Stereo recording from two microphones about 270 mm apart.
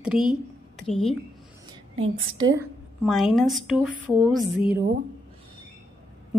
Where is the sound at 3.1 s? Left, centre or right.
Centre.